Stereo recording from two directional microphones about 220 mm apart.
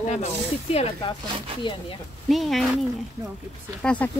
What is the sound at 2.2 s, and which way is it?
Speech, centre (ahead or behind).